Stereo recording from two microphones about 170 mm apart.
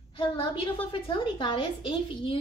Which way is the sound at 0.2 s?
30° left (ahead or behind).